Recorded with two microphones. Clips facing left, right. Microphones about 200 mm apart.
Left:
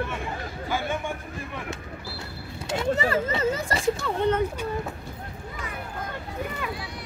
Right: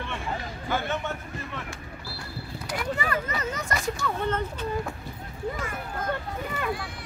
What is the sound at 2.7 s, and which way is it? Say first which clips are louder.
Speech: left 5 dB; 25° left (ahead or behind).